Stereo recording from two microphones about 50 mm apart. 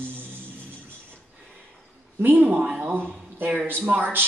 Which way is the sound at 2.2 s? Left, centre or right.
Right.